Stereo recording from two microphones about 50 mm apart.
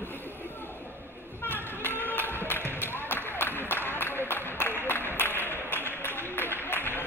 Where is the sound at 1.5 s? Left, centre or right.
Left.